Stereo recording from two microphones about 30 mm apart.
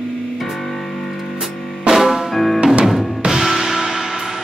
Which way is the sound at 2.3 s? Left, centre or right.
Centre.